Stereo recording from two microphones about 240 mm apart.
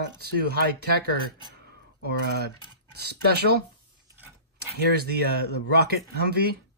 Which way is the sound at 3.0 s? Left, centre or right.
Right.